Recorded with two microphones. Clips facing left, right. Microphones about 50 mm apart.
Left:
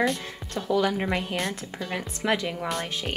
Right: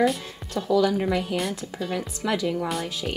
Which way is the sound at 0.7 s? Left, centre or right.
Left.